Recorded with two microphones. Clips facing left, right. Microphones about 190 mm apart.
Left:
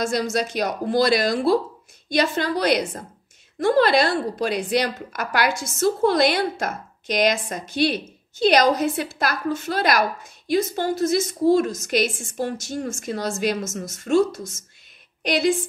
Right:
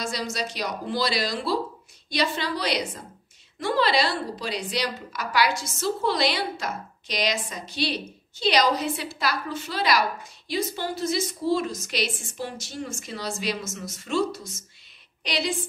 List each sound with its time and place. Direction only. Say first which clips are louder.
0.0 s speech: left 7 dB; 50° left (ahead or behind)